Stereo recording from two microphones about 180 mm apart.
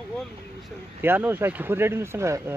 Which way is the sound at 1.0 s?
10° right (ahead or behind).